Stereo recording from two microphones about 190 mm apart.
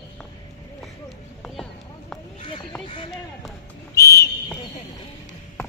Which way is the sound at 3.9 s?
15° left (ahead or behind).